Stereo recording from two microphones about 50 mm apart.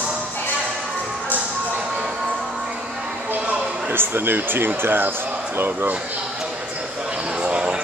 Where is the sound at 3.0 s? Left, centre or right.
Centre.